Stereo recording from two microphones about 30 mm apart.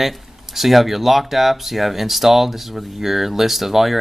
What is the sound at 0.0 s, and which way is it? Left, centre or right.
Speech, centre.